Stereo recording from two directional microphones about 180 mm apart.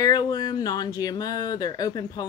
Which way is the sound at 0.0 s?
20° left (ahead or behind).